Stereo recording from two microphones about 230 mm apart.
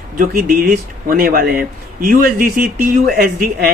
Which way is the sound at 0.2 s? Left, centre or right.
Right.